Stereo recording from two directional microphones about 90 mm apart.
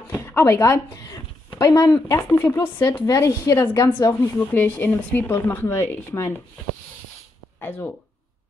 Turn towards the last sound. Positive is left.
turn(degrees=25)  # may be behind; listen again after turning